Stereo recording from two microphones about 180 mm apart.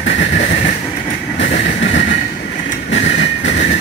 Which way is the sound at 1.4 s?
80° left.